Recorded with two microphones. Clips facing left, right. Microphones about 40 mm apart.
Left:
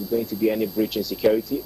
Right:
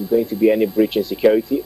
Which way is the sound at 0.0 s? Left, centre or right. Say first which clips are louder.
Right 7 dB; right.